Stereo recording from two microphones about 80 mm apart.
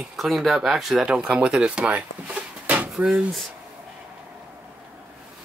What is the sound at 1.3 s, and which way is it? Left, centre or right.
Drawer open or close, centre.